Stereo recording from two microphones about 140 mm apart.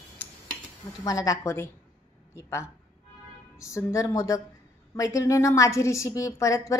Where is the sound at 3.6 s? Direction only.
20° left (ahead or behind).